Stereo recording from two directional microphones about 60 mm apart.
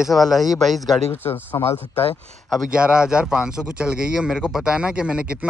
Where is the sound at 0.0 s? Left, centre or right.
Centre.